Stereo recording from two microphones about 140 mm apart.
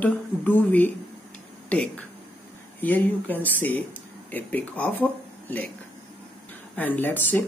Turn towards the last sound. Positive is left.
turn(degrees=15)  # may be behind; listen again after turning